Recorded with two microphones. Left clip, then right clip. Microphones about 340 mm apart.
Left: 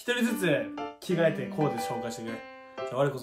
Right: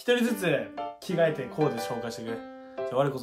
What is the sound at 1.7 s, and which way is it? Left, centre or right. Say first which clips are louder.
Speech: even; centre.